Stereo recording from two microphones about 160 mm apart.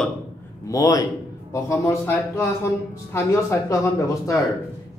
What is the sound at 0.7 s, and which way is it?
Speech, 20° left (ahead or behind).